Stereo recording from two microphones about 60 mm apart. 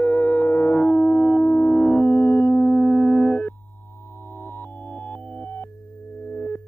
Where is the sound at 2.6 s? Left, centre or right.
Left.